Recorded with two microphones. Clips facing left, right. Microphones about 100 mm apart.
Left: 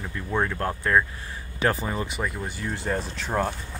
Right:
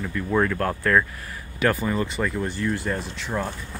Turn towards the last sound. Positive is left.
turn(degrees=40)  # may be behind; listen again after turning